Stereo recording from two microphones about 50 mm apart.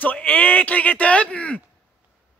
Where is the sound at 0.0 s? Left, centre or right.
Left.